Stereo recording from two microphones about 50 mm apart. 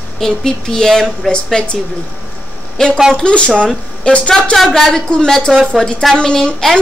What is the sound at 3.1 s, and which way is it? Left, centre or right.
Speech, left.